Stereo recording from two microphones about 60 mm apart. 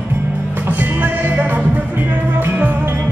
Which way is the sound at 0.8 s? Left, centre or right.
Right.